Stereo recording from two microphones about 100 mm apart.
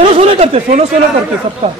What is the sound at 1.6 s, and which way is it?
Speech, 70° right (ahead or behind).